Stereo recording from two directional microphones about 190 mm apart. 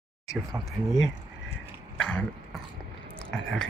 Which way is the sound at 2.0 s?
5° left (ahead or behind).